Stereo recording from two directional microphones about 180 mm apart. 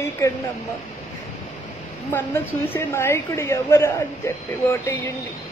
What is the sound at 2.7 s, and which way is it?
A woman's voice, 15° left (ahead or behind).